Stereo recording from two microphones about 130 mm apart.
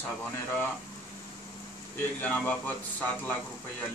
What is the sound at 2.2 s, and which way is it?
Speech, 10° left (ahead or behind).